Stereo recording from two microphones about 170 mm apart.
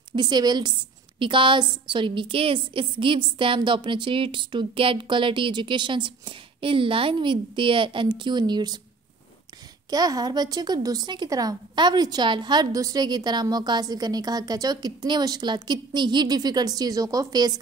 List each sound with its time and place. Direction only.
0.1 s speech: 25° right (ahead or behind)
9.8 s speech: 20° right (ahead or behind)